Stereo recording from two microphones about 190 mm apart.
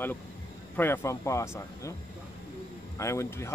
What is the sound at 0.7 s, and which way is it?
A man's voice, 10° left (ahead or behind).